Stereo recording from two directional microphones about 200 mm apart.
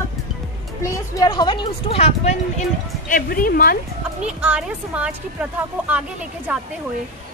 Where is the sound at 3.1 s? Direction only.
45° left (ahead or behind).